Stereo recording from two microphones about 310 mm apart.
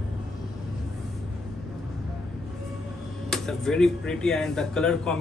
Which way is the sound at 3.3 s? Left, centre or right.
Centre.